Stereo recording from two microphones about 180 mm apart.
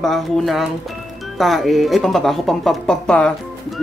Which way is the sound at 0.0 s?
Centre (ahead or behind).